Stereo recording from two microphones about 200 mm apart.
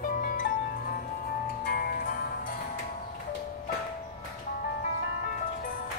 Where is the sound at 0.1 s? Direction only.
45° left (ahead or behind).